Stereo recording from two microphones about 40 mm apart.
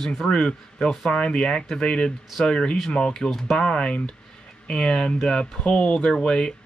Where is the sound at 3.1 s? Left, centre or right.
Centre.